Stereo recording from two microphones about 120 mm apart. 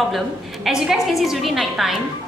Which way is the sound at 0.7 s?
5° right (ahead or behind).